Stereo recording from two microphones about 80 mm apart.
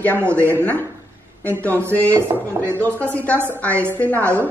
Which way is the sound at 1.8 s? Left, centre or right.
Right.